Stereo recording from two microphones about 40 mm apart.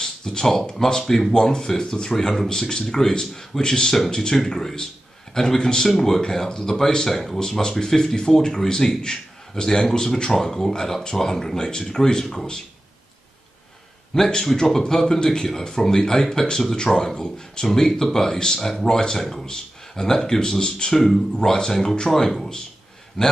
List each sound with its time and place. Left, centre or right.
0.0 s a sound: centre
0.7 s a man's voice: centre
1.3 s a man's voice: centre
14.1 s a man's voice: centre